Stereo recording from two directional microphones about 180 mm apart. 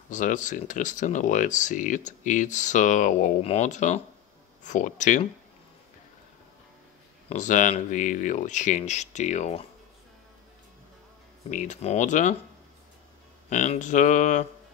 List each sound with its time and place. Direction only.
0.1 s speech: 45° left (ahead or behind)
7.2 s speech: 45° left (ahead or behind)
11.5 s speech: 45° left (ahead or behind)
13.5 s speech: 40° left (ahead or behind)